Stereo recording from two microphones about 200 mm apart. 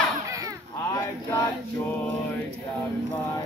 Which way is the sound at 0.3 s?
15° right (ahead or behind).